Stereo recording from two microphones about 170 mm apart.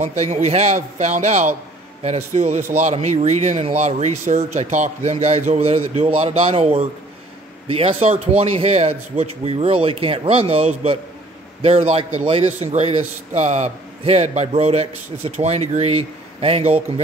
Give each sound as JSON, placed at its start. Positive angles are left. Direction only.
{"t": 0.0, "sound": "a man's voice", "side_deg": -40}